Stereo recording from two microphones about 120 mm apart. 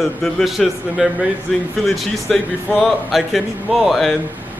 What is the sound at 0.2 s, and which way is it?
Speech, centre (ahead or behind).